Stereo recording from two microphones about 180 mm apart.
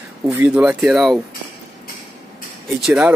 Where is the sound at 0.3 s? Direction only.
10° right (ahead or behind).